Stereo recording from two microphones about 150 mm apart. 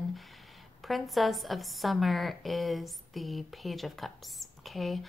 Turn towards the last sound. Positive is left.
turn(degrees=0)  # may be behind; listen again after turning